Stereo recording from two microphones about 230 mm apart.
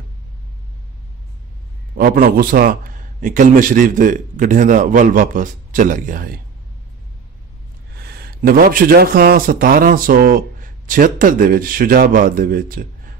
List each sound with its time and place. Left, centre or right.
2.0 s speech: right
8.0 s speech: right